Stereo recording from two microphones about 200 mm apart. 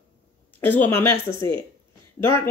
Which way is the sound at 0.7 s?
10° left (ahead or behind).